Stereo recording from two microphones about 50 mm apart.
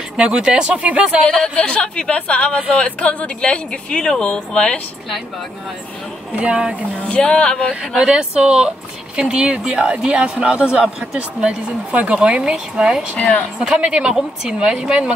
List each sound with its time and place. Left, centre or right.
0.2 s speech: centre
1.2 s speech: centre
6.3 s speech: centre
7.2 s speech: centre
8.0 s speech: centre